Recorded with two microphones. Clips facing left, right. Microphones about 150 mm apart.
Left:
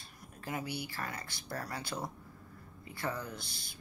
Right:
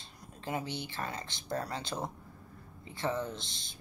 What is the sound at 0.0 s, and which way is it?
Speech, 25° right (ahead or behind).